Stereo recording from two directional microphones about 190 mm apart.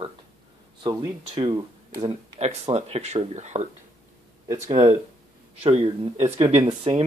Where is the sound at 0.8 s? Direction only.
25° right (ahead or behind).